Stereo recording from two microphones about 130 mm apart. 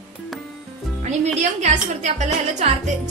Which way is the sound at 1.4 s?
60° right (ahead or behind).